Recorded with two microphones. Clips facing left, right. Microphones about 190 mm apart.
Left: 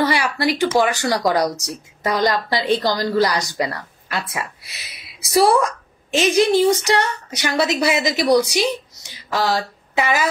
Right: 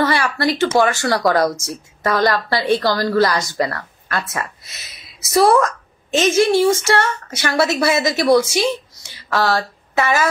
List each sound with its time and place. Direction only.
0.0 s speech: 15° left (ahead or behind)